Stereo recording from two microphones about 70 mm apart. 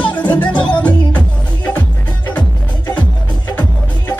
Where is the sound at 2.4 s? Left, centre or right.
Left.